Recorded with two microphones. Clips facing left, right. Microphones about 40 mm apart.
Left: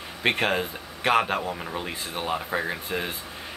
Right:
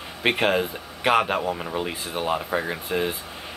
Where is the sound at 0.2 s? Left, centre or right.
Centre.